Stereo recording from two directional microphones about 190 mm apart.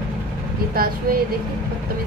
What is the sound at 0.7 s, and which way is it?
Speech, 50° right (ahead or behind).